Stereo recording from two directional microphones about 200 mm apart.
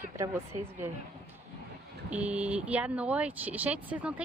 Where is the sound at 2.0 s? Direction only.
10° right (ahead or behind).